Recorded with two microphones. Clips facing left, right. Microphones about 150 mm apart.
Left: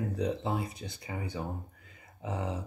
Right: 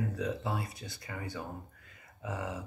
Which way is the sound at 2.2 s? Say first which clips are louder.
Left 3 dB; 20° left (ahead or behind).